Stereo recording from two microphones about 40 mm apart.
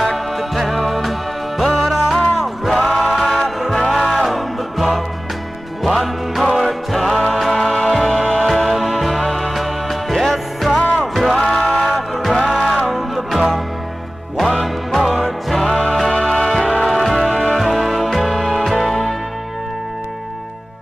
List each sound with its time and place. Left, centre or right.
0.0 s music: centre
12.4 s music: centre
12.8 s music: centre
17.3 s music: left
17.6 s music: centre